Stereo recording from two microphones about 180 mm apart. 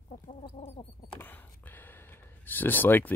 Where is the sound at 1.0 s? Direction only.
10° left (ahead or behind).